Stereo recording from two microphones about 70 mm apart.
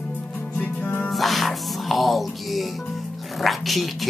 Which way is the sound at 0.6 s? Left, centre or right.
Left.